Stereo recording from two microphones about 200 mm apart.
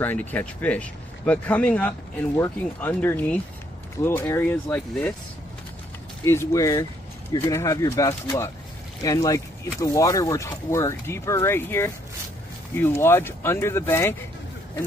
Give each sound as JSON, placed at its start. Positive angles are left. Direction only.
{"t": 0.0, "sound": "speech", "side_deg": 10}
{"t": 6.2, "sound": "speech", "side_deg": 15}